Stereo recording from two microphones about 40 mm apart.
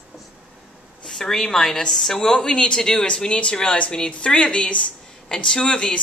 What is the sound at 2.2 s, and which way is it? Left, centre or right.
Speech, centre.